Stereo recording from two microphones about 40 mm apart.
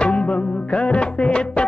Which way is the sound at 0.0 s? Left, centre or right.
Left.